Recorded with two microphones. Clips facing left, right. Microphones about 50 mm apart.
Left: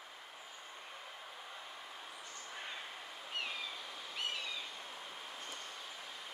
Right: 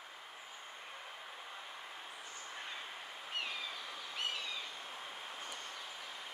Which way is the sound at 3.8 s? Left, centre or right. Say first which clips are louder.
Right 1 dB; right.